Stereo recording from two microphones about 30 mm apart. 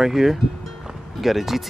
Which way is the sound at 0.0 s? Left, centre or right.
Centre.